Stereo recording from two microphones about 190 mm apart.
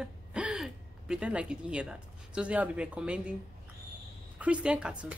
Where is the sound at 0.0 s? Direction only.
5° right (ahead or behind).